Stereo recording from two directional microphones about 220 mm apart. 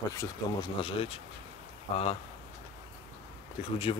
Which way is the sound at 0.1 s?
15° left (ahead or behind).